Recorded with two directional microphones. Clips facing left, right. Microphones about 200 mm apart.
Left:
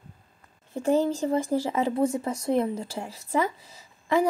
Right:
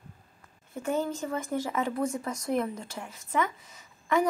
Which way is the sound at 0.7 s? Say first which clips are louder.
Left 7 dB; 30° left (ahead or behind).